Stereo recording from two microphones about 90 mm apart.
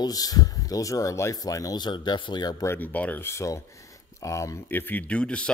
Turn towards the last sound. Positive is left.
turn(degrees=15)  # may be behind; listen again after turning